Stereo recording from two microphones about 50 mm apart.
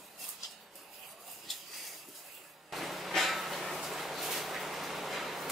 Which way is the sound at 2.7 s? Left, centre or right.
Centre.